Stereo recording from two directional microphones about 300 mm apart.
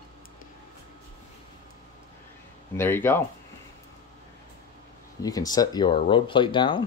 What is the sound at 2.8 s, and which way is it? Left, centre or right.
Speech, centre.